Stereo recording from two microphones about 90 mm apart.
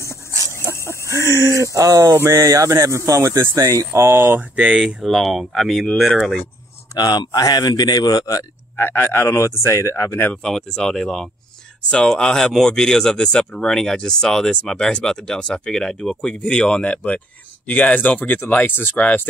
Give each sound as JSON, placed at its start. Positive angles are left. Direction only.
{"t": 0.1, "sound": "a sound", "side_deg": -35}
{"t": 0.8, "sound": "speech", "side_deg": -30}
{"t": 4.6, "sound": "speech", "side_deg": -10}
{"t": 7.0, "sound": "speech", "side_deg": 45}
{"t": 8.7, "sound": "speech", "side_deg": 25}
{"t": 10.3, "sound": "speech", "side_deg": 5}